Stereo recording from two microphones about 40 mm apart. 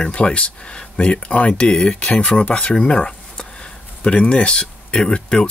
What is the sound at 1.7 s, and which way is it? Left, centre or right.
A man's voice, centre.